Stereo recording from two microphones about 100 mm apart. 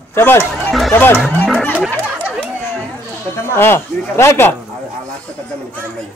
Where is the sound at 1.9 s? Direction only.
20° left (ahead or behind).